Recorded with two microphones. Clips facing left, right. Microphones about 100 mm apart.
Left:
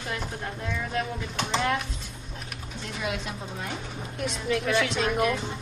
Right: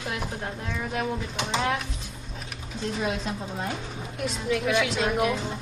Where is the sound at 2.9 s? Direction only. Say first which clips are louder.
Right 2 dB; 35° right (ahead or behind).